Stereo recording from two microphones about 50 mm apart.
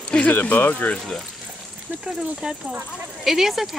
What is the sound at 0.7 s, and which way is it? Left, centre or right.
Speech, left.